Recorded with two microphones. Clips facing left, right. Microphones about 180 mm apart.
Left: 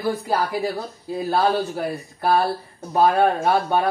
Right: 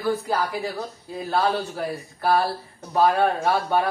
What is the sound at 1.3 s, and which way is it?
Speech, 25° left (ahead or behind).